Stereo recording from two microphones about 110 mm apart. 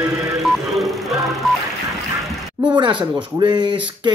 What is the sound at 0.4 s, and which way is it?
Music, centre (ahead or behind).